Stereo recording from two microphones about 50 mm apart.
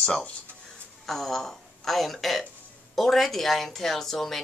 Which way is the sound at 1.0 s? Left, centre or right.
Centre.